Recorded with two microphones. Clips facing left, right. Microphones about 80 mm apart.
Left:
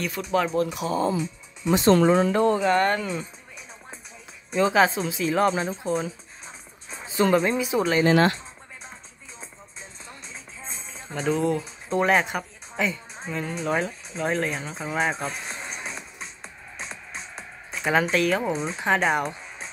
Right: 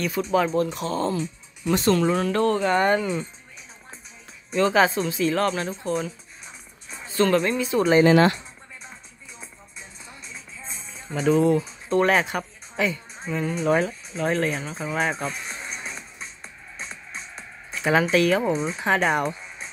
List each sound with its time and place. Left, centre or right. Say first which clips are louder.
0.0 s speech: right 2 dB; centre
1.9 s speech: left 4 dB; left
2.2 s speech: left 1 dB; centre
2.7 s speech: right 1 dB; centre
4.5 s speech: even; centre
10.7 s speech: right 3 dB; centre
15.8 s music: left 1 dB; centre
17.4 s speech: right 2 dB; centre